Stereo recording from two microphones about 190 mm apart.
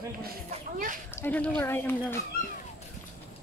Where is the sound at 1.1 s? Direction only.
10° left (ahead or behind).